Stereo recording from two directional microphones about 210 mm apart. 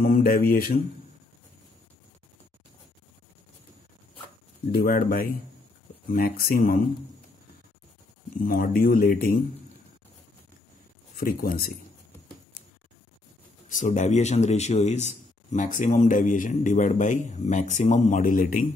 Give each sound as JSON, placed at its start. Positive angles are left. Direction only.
{"t": 0.0, "sound": "speech", "side_deg": 40}
{"t": 4.7, "sound": "speech", "side_deg": 45}
{"t": 8.4, "sound": "speech", "side_deg": 40}
{"t": 11.1, "sound": "speech", "side_deg": 45}
{"t": 13.7, "sound": "a man's voice", "side_deg": 35}